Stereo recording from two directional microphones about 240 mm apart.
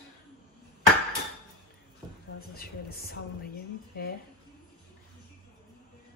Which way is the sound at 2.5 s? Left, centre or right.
Left.